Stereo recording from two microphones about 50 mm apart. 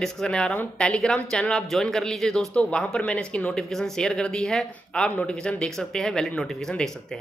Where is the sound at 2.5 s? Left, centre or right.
Left.